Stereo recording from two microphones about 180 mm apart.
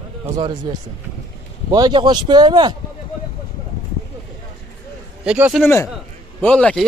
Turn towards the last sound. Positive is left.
turn(degrees=5)  # may be behind; listen again after turning